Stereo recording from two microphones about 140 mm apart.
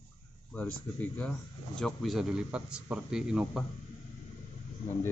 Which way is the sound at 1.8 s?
Centre (ahead or behind).